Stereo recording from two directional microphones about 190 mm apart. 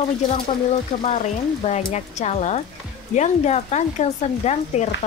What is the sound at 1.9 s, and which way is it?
Speech, 35° left (ahead or behind).